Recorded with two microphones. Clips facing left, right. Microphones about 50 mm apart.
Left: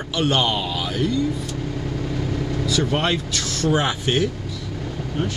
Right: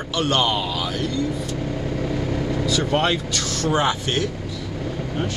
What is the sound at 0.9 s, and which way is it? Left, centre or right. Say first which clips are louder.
Speech: left 6 dB; centre.